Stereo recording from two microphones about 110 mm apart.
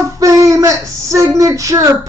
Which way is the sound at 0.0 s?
30° right (ahead or behind).